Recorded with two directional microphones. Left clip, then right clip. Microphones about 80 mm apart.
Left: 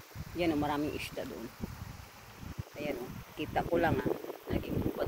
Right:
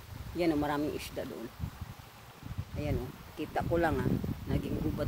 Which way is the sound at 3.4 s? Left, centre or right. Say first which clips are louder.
Even; centre.